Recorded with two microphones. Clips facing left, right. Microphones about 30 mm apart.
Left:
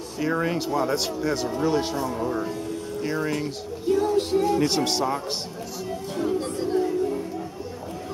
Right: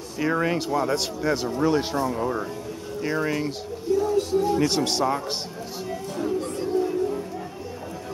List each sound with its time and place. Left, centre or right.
0.2 s speech: centre
4.2 s music: left
4.5 s speech: centre